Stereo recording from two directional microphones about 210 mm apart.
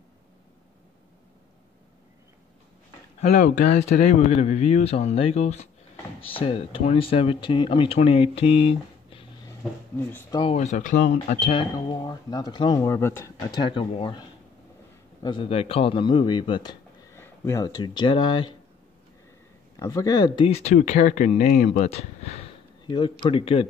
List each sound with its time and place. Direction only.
3.2 s speech: 35° left (ahead or behind)
9.9 s speech: 10° left (ahead or behind)
10.4 s speech: 30° left (ahead or behind)
15.2 s a man's voice: 25° left (ahead or behind)
19.8 s speech: 15° left (ahead or behind)